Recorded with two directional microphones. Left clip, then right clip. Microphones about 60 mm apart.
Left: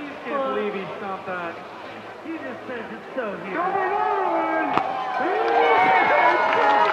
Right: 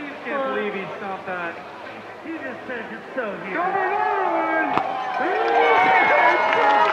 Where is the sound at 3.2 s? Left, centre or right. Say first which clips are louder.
Right 1 dB; right.